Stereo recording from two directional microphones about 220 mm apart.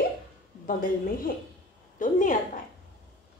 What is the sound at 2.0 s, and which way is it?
Speech, 35° left (ahead or behind).